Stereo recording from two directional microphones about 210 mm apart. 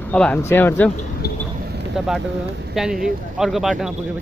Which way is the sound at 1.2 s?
50° left (ahead or behind).